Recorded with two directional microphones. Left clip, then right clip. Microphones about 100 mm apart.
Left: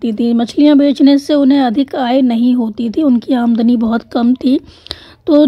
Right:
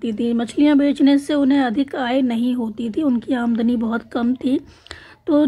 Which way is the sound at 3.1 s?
70° left (ahead or behind).